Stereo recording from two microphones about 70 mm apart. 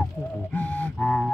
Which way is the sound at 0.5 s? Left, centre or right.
Left.